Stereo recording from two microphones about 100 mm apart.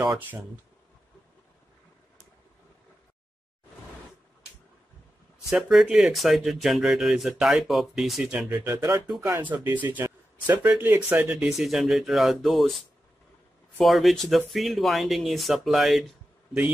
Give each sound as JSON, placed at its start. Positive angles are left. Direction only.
{"t": 5.5, "sound": "speech", "side_deg": 0}
{"t": 8.5, "sound": "speech", "side_deg": -20}
{"t": 11.3, "sound": "speech", "side_deg": -5}
{"t": 13.7, "sound": "speech", "side_deg": 0}